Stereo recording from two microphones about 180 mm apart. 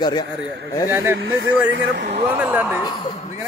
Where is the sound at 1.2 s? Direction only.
90° right.